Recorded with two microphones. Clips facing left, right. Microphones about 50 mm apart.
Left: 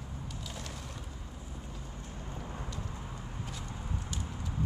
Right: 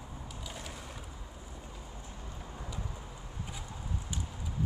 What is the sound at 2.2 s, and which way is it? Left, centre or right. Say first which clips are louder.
Vehicle: left 5 dB; left.